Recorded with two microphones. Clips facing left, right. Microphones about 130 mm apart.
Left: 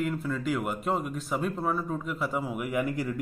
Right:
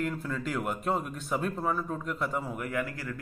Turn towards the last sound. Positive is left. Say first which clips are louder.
# left 4 dB
turn(degrees=20)  # may be behind; listen again after turning